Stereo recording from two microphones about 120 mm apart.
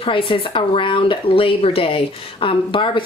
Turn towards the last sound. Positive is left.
turn(degrees=45)  # may be behind; listen again after turning